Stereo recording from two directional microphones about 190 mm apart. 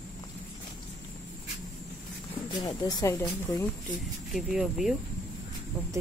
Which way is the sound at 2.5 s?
20° left (ahead or behind).